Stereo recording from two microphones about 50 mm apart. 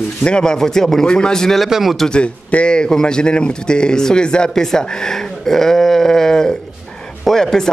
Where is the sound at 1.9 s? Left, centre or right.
Centre.